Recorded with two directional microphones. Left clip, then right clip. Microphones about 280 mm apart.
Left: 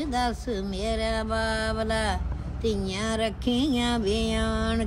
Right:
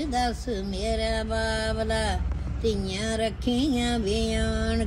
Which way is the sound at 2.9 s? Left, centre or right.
Centre.